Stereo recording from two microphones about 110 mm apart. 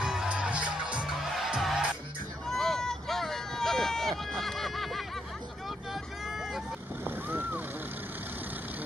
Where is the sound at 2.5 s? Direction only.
5° left (ahead or behind).